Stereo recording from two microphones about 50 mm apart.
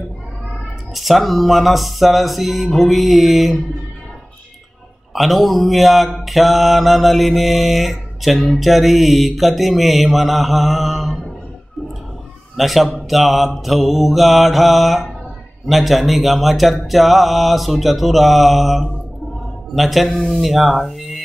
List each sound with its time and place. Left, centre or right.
0.9 s speech: centre
5.1 s speech: centre
12.5 s speech: centre